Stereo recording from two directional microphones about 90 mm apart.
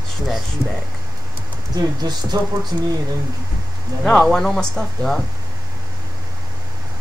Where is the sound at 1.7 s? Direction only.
45° right (ahead or behind).